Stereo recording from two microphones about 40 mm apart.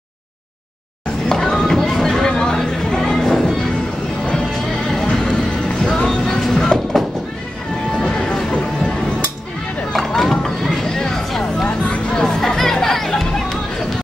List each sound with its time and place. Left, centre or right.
1.3 s chatter: centre
5.0 s music: centre
6.0 s music: centre
7.9 s music: centre
9.9 s a sound: centre
11.9 s music: left
12.4 s music: centre